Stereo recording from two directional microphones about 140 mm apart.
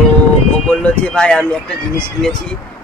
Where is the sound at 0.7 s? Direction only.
10° left (ahead or behind).